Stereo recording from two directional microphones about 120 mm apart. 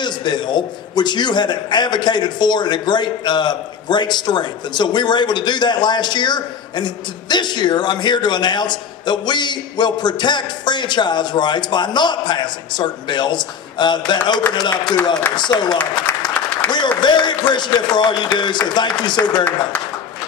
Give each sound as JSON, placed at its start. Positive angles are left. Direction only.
{"t": 0.0, "sound": "a man's voice", "side_deg": 40}
{"t": 15.8, "sound": "applause", "side_deg": 10}
{"t": 17.0, "sound": "a man's voice", "side_deg": 40}